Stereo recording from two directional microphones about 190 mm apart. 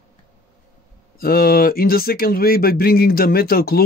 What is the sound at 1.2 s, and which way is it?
Speech, 50° left (ahead or behind).